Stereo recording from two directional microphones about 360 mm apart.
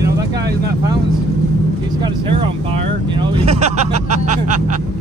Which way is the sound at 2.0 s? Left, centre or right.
Centre.